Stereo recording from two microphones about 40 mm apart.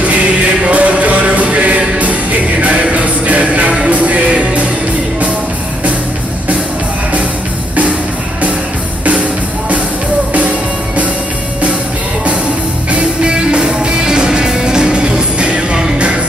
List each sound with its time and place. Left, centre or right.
0.7 s music: right
13.2 s music: right